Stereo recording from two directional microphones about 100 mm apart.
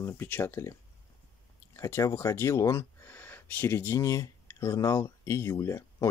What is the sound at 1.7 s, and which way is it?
Speech, 30° left (ahead or behind).